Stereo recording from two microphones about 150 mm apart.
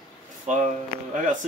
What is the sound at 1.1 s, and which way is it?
Speech, 60° right (ahead or behind).